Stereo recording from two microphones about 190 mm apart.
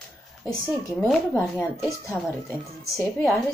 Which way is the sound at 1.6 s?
15° left (ahead or behind).